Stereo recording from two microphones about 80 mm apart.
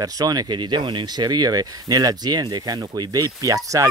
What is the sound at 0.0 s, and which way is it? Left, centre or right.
Speech, right.